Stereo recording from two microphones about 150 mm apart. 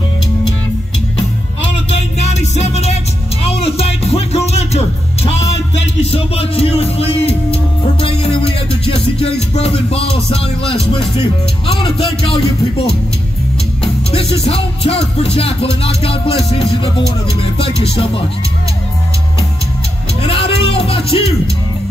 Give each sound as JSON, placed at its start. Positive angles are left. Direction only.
{"t": 1.9, "sound": "music", "side_deg": 45}
{"t": 14.1, "sound": "music", "side_deg": 40}
{"t": 20.2, "sound": "music", "side_deg": 40}